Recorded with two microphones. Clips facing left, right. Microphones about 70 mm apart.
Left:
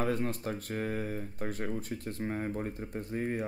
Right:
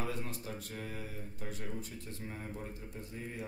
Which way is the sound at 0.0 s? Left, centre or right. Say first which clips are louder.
Left 8 dB; left.